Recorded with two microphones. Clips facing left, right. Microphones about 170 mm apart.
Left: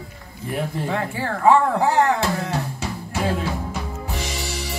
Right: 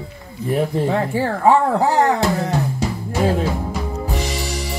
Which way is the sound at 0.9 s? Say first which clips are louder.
Right 6 dB; 40° right (ahead or behind).